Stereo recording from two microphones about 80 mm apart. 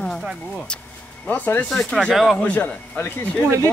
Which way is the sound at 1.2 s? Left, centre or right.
Left.